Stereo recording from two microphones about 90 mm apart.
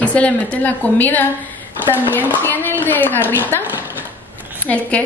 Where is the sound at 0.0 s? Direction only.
15° left (ahead or behind).